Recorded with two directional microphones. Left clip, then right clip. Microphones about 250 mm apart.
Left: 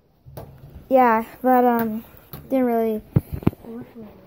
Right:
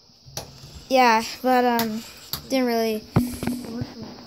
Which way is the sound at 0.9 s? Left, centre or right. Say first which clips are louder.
Left 1 dB; centre.